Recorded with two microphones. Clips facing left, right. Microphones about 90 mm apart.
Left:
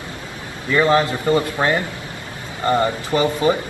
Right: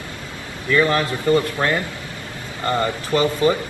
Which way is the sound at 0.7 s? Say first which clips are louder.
Left 2 dB; 25° left (ahead or behind).